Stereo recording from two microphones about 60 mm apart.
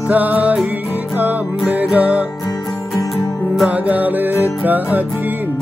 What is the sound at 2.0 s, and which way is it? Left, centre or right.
Music, right.